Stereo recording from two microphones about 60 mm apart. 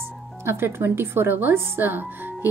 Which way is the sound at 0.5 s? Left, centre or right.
Right.